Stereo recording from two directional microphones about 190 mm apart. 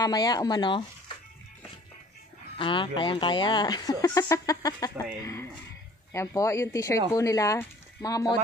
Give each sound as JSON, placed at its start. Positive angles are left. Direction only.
{"t": 0.0, "sound": "speech", "side_deg": 20}
{"t": 2.5, "sound": "speech", "side_deg": 25}